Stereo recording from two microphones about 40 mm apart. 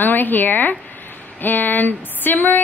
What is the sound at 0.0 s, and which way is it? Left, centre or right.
A woman's voice, left.